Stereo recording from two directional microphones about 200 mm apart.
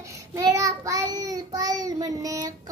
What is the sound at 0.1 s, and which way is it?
Child singing, 15° right (ahead or behind).